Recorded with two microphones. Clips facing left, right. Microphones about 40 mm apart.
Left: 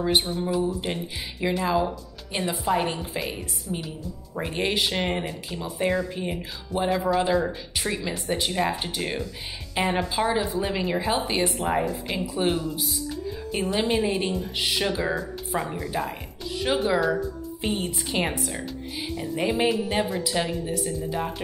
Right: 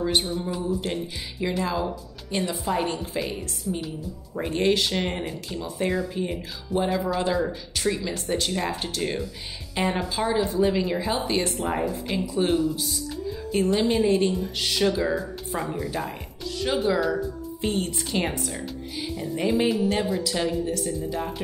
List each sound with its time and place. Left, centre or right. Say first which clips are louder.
0.0 s speech: left 1 dB; centre
0.5 s a woman's voice: left 3 dB; centre
0.7 s speech: right 1 dB; centre
15.5 s a woman's voice: left 1 dB; centre
16.6 s speech: left 1 dB; centre
21.0 s a woman's voice: left 1 dB; centre